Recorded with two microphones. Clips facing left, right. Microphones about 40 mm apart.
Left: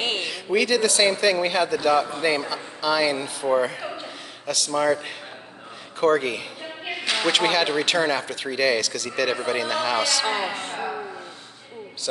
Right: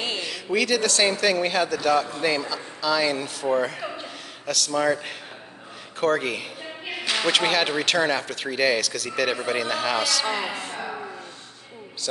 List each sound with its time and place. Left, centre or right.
0.2 s a man's voice: centre
3.8 s chuckle: centre
5.9 s speech: centre
10.5 s speech: left